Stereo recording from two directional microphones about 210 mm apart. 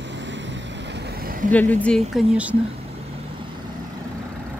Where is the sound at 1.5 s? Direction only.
5° left (ahead or behind).